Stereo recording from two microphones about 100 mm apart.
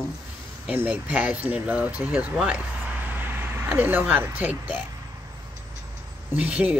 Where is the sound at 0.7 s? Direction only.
15° right (ahead or behind).